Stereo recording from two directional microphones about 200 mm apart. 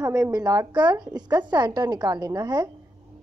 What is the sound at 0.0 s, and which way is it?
A woman's voice, 15° right (ahead or behind).